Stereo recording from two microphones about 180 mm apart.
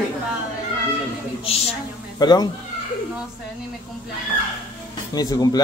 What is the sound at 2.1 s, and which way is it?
Speech, 20° left (ahead or behind).